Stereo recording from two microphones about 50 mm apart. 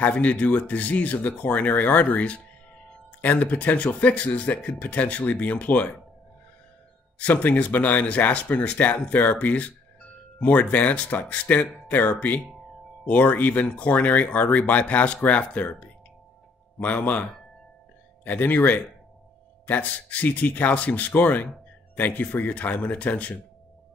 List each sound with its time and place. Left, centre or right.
0.0 s speech: left
7.2 s speech: left